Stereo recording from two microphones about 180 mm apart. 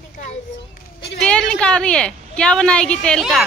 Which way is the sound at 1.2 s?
5° left (ahead or behind).